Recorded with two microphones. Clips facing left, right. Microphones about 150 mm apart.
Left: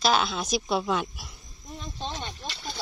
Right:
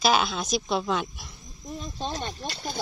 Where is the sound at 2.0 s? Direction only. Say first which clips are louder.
Right 3 dB; 40° right (ahead or behind).